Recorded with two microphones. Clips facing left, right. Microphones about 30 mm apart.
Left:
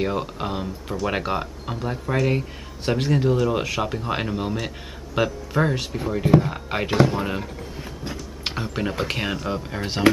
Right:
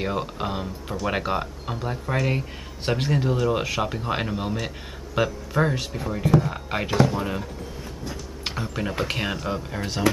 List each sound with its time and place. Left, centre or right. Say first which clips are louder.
0.0 s speech: left 2 dB; centre
8.1 s a sound: left 2 dB; centre
8.9 s speech: left 1 dB; centre
9.8 s speech: left 5 dB; left